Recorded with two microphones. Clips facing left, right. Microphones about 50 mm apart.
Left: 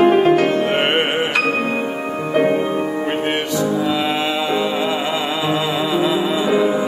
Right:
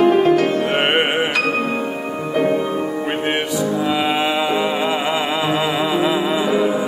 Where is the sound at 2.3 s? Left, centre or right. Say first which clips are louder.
Left 2 dB; left.